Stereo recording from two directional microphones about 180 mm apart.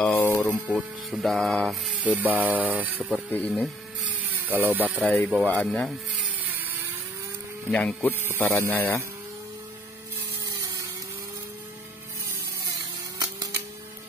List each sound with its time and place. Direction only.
0.0 s a sound: 10° left (ahead or behind)
1.1 s speech: centre (ahead or behind)
3.3 s speech: 10° left (ahead or behind)
4.3 s power tool: 10° right (ahead or behind)
5.0 s speech: 10° left (ahead or behind)
6.4 s vehicle: 10° right (ahead or behind)
7.7 s speech: 10° left (ahead or behind)
10.4 s a sound: 20° right (ahead or behind)